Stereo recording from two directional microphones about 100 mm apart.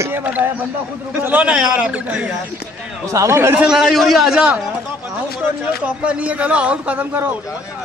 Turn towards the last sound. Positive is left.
turn(degrees=-15)  # may be behind; listen again after turning